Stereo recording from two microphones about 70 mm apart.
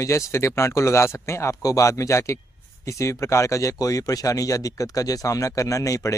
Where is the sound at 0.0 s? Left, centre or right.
Left.